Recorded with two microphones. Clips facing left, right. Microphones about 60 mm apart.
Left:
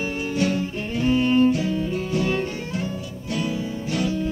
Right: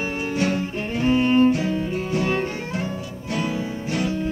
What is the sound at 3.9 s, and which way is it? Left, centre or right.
Music, right.